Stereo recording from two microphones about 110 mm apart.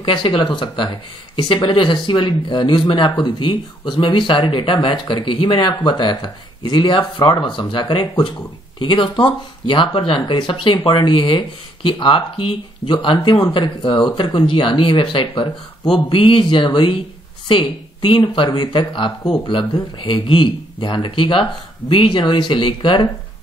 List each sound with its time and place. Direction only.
0.0 s speech: 50° left (ahead or behind)